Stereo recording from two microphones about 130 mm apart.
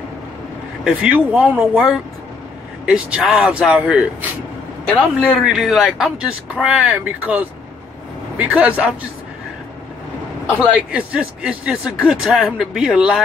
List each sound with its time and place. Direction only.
0.8 s speech: 5° right (ahead or behind)
10.6 s speech: 5° right (ahead or behind)